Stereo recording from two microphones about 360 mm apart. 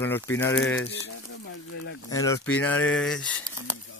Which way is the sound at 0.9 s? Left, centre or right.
Left.